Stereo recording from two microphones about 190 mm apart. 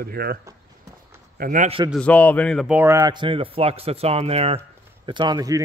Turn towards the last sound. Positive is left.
turn(degrees=-20)  # may be behind; listen again after turning